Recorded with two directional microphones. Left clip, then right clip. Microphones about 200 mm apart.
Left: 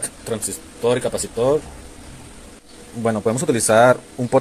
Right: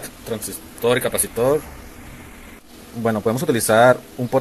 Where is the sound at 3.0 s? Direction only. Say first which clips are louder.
Even; centre (ahead or behind).